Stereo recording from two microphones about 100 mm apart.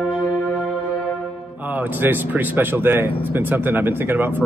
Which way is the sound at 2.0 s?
20° right (ahead or behind).